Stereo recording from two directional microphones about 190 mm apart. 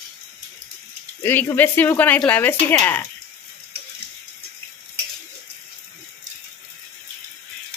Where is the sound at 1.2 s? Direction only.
10° left (ahead or behind).